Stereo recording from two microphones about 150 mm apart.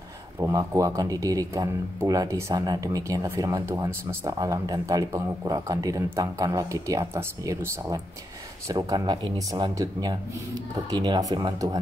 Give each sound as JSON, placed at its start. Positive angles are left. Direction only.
{"t": 0.4, "sound": "speech", "side_deg": -20}